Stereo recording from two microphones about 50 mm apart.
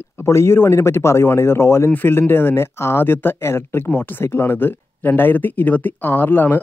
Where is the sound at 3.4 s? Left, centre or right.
Left.